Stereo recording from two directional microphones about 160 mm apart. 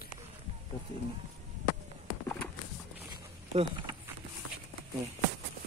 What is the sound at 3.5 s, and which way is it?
Speech, 30° right (ahead or behind).